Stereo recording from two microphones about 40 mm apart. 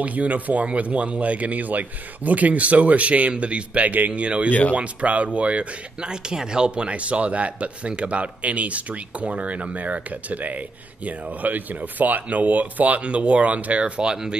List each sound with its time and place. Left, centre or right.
0.0 s speech: right
3.8 s speech: right
4.1 s speech: right
4.5 s speech: left
4.7 s speech: right
14.0 s speech: centre